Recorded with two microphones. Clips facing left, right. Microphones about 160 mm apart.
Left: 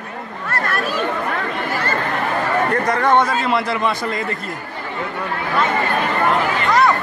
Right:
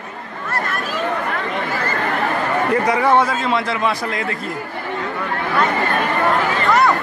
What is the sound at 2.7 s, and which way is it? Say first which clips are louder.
A man's voice: right 3 dB; 5° right (ahead or behind).